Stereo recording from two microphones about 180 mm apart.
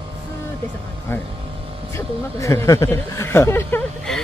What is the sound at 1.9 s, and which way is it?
Speech, 15° left (ahead or behind).